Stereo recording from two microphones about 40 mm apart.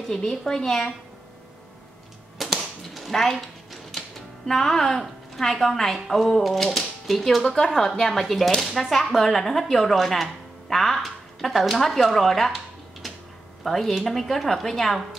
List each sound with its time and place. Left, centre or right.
0.1 s a woman's voice: centre
2.4 s typewriter: centre
3.1 s a woman's voice: centre
4.5 s a woman's voice: centre
13.7 s speech: centre